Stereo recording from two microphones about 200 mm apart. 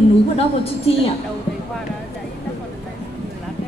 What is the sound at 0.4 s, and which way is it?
Speech, 30° left (ahead or behind).